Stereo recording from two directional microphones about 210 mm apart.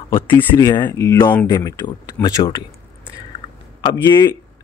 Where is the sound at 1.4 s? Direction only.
20° left (ahead or behind).